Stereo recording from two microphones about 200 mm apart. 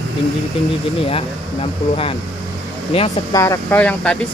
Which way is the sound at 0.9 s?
30° left (ahead or behind).